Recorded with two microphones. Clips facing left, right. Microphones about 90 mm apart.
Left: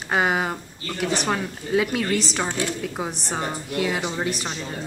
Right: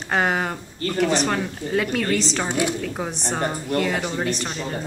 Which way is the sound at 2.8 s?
5° left (ahead or behind).